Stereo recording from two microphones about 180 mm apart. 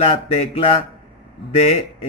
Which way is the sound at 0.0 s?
30° left (ahead or behind).